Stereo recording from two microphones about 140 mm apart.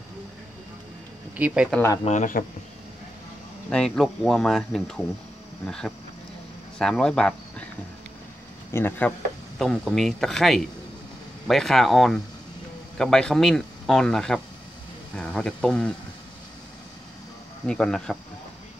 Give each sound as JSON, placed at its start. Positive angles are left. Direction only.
{"t": 1.3, "sound": "speech", "side_deg": -10}
{"t": 2.0, "sound": "speech", "side_deg": 65}
{"t": 3.7, "sound": "speech", "side_deg": 5}
{"t": 8.7, "sound": "speech", "side_deg": 15}
{"t": 9.6, "sound": "speech", "side_deg": 5}
{"t": 17.6, "sound": "speech", "side_deg": 5}